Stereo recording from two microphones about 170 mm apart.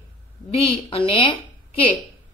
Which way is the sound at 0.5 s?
35° left (ahead or behind).